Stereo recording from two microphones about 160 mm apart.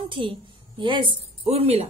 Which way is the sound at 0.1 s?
35° right (ahead or behind).